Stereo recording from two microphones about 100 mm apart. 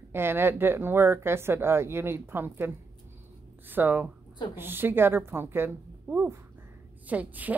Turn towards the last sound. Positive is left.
turn(degrees=-15)  # may be behind; listen again after turning